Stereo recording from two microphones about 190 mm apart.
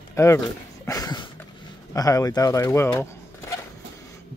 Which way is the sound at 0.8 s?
20° left (ahead or behind).